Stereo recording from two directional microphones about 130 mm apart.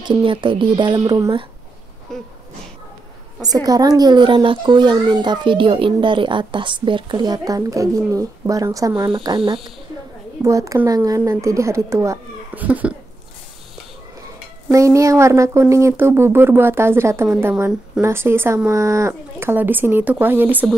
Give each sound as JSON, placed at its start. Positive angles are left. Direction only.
{"t": 0.0, "sound": "speech", "side_deg": -40}
{"t": 0.9, "sound": "speech", "side_deg": -30}
{"t": 2.1, "sound": "a sound", "side_deg": 5}
{"t": 3.4, "sound": "speech", "side_deg": -30}
{"t": 10.4, "sound": "speech", "side_deg": -25}
{"t": 12.5, "sound": "speech", "side_deg": -10}
{"t": 14.7, "sound": "speech", "side_deg": -25}